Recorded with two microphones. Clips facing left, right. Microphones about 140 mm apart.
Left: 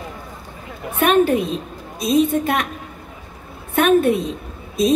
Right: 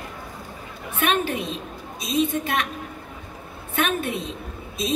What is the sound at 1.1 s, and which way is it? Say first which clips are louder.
A woman's voice: left 10 dB; 40° left (ahead or behind).